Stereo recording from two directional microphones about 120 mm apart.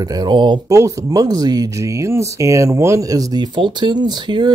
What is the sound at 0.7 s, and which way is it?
Speech, 25° right (ahead or behind).